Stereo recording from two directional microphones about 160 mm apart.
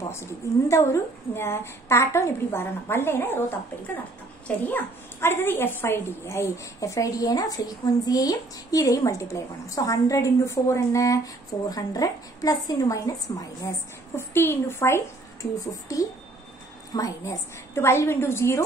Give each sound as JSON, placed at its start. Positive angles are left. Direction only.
{"t": 0.1, "sound": "a woman's voice", "side_deg": 15}